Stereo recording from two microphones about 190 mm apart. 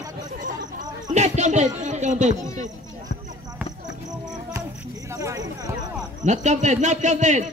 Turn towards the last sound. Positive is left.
turn(degrees=-40)  # may be behind; listen again after turning